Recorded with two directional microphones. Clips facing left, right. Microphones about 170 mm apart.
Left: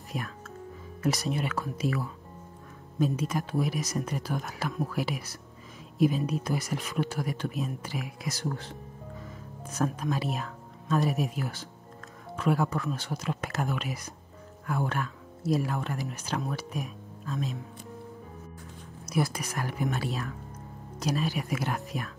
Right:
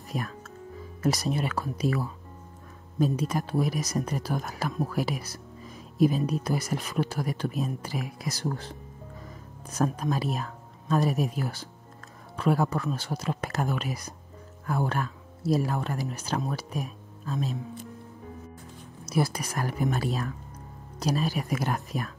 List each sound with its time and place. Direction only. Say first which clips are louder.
0.1 s speech: right 2 dB; 40° right (ahead or behind)
9.7 s speech: right 2 dB; 35° right (ahead or behind)
19.1 s speech: right 2 dB; 35° right (ahead or behind)